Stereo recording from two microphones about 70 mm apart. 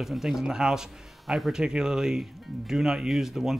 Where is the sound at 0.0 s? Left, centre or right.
Centre.